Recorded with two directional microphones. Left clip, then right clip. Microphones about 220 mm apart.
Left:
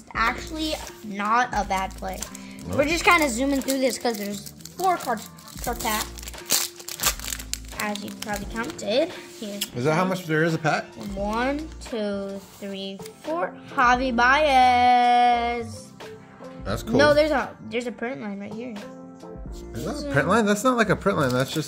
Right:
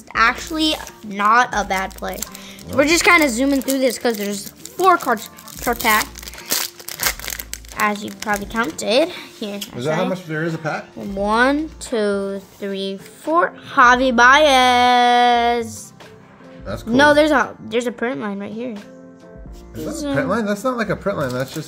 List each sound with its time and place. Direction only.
0.1 s a woman's voice: 25° right (ahead or behind)
2.8 s speech: 30° right (ahead or behind); by 4.2 s 15° right (ahead or behind)
4.2 s speech: 30° right (ahead or behind)
6.5 s crumpling: 10° right (ahead or behind)
8.5 s speech: 30° right (ahead or behind)
9.6 s speech: 35° left (ahead or behind)
11.1 s a woman's voice: 25° right (ahead or behind)
16.9 s a woman's voice: 25° right (ahead or behind)
20.2 s speech: 40° left (ahead or behind)